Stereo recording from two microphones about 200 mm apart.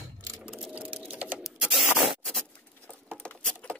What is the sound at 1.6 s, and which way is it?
Printer, centre (ahead or behind).